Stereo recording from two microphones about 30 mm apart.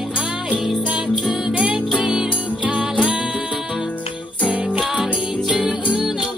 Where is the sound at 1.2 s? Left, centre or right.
Centre.